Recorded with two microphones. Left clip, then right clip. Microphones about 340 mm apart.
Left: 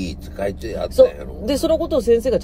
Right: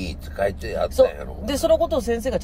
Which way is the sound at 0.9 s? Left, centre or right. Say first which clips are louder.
Left 6 dB; centre.